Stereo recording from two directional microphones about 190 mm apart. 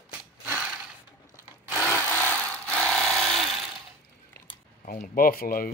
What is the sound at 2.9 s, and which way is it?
Jackhammer, centre (ahead or behind).